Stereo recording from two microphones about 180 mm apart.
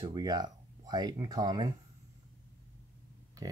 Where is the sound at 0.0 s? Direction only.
20° right (ahead or behind).